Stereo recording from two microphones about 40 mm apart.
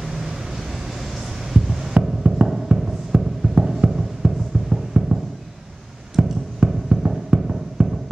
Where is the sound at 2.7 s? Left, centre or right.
Right.